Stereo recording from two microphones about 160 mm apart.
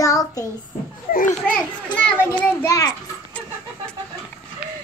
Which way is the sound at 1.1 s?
60° left (ahead or behind).